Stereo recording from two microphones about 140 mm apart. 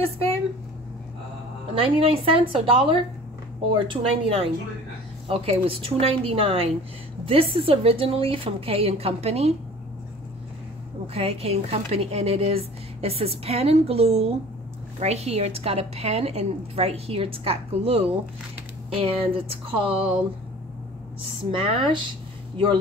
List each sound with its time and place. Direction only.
1.8 s a woman's voice: 40° right (ahead or behind)
11.1 s a woman's voice: 50° right (ahead or behind)
21.5 s a woman's voice: 35° right (ahead or behind)